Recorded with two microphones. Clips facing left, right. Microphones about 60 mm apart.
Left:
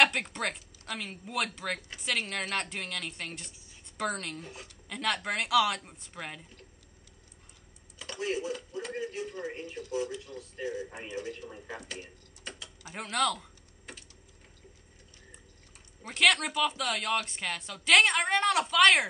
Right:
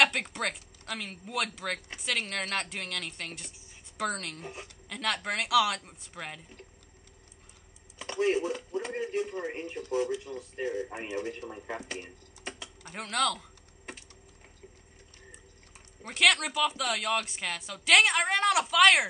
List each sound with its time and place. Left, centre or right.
0.0 s speech: centre
8.0 s speech: right
10.2 s speech: right
11.9 s a sound: right
12.8 s speech: centre
16.0 s speech: centre